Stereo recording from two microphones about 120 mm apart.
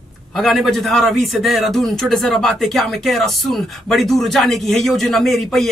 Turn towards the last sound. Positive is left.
turn(degrees=0)  # may be behind; listen again after turning